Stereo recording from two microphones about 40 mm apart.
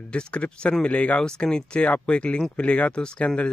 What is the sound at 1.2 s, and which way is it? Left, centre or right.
A man's voice, centre.